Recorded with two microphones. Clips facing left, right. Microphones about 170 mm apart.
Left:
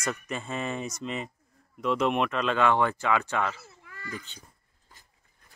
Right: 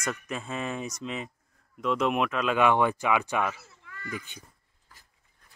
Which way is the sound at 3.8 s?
30° left (ahead or behind).